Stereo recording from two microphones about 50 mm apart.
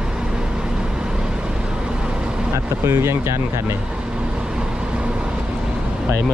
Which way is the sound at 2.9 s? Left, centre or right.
Right.